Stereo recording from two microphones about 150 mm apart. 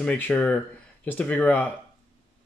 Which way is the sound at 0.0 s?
10° left (ahead or behind).